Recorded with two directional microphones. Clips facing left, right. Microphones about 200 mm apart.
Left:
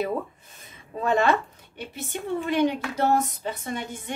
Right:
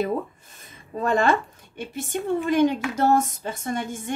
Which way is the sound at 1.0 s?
50° right (ahead or behind).